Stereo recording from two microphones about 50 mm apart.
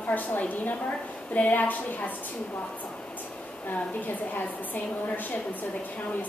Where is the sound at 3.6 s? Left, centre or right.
Left.